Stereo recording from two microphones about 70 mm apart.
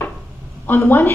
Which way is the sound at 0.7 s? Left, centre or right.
Left.